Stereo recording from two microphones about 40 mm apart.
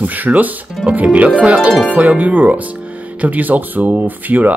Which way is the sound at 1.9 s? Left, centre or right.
Right.